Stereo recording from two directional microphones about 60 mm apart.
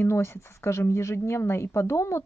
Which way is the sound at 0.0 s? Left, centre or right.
Left.